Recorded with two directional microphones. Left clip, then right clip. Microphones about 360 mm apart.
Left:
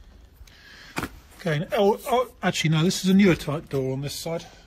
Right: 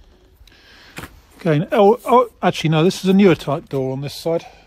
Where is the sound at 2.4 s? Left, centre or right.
Centre.